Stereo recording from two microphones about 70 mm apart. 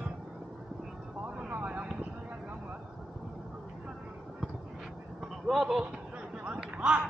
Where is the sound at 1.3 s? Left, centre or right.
Right.